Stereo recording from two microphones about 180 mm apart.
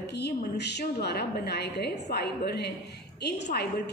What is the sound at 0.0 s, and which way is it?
A woman's voice, 65° left (ahead or behind).